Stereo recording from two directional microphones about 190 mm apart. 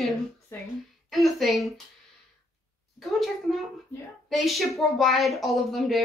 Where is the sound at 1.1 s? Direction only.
Centre (ahead or behind).